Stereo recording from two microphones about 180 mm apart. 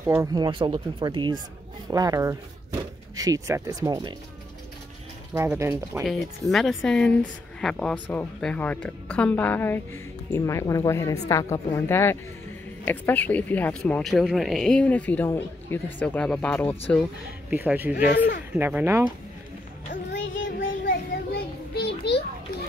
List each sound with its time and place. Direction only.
0.0 s speech: 15° right (ahead or behind)
5.3 s speech: 15° right (ahead or behind)
6.0 s a woman's voice: centre (ahead or behind)
17.5 s speech: 10° right (ahead or behind)
20.1 s music: 90° left
20.6 s a sound: 75° left (ahead or behind)